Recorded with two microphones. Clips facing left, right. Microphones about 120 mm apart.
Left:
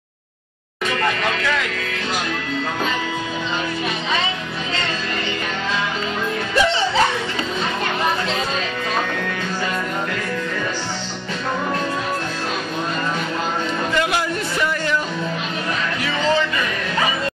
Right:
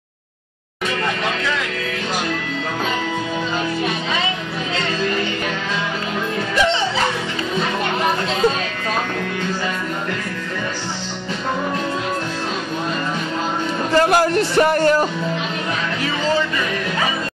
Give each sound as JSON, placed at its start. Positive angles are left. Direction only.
{"t": 13.9, "sound": "music", "side_deg": -40}
{"t": 14.6, "sound": "speech", "side_deg": -45}